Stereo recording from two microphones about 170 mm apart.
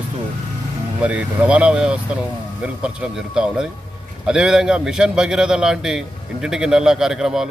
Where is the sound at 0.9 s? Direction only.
10° right (ahead or behind).